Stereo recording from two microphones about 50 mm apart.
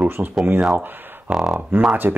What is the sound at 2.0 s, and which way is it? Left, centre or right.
Speech, right.